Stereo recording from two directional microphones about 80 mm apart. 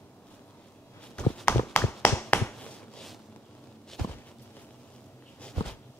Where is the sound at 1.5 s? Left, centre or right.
Left.